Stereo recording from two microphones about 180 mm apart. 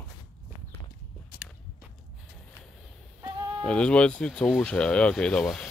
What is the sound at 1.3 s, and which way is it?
Biting, 55° left (ahead or behind).